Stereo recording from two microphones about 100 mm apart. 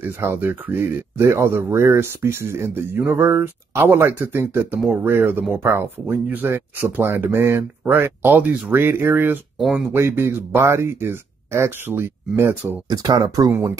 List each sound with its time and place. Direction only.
0.0 s speech: 20° right (ahead or behind)
9.6 s speech: 5° right (ahead or behind)
9.8 s speech: 25° right (ahead or behind)
12.8 s speech: 40° right (ahead or behind)
13.5 s speech: 25° right (ahead or behind)